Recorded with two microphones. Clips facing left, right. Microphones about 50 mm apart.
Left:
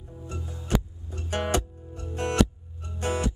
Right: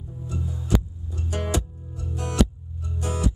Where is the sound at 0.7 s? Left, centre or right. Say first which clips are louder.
Right 1 dB; left.